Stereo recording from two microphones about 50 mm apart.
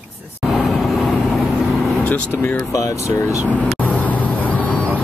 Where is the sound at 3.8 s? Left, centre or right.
Left.